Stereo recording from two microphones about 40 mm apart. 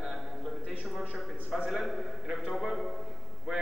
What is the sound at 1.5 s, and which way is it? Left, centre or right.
Speech, centre.